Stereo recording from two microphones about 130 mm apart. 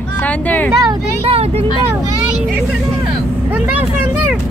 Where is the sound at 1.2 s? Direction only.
50° right (ahead or behind).